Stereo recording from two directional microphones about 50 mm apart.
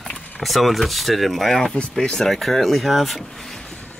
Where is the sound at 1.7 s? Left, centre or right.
Centre.